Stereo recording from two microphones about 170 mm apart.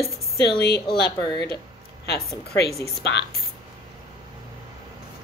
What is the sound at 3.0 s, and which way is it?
Speech, 80° left.